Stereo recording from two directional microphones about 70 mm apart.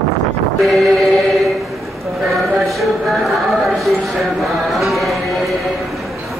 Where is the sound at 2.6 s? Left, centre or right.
Centre.